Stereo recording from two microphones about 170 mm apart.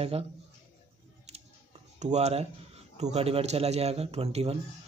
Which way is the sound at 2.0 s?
40° right (ahead or behind).